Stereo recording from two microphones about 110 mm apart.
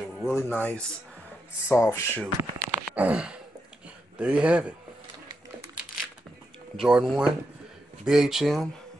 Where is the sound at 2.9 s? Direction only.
15° right (ahead or behind).